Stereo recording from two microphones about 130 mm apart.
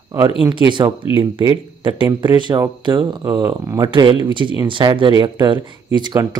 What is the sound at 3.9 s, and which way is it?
Speech, 35° right (ahead or behind).